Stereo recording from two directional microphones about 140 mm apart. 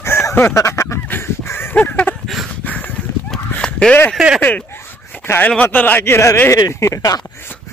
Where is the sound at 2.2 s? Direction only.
Centre (ahead or behind).